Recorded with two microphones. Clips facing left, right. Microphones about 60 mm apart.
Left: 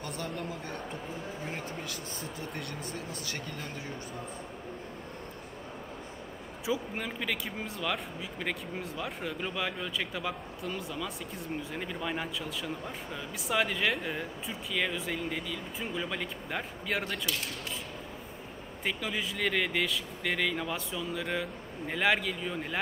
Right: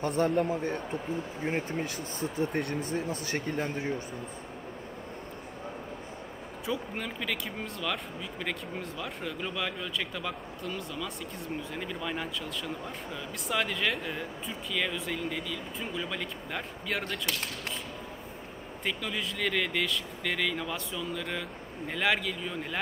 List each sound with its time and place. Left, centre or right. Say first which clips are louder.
0.0 s speech: right 10 dB; right
1.4 s speech: right 7 dB; right
2.1 s speech: right 9 dB; right
2.5 s speech: right 8 dB; right
2.8 s speech: right 6 dB; right
6.6 s speech: left 1 dB; centre
18.9 s speech: even; centre